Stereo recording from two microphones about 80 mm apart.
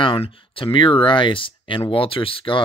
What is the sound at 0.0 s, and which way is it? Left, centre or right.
Speech, left.